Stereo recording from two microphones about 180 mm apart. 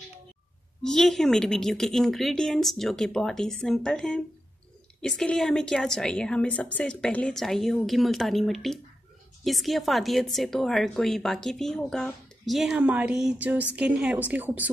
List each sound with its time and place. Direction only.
0.8 s a woman's voice: centre (ahead or behind)